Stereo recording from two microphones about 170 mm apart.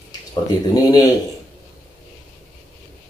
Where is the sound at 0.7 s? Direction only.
20° left (ahead or behind).